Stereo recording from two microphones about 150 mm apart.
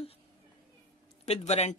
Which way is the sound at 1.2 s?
45° left (ahead or behind).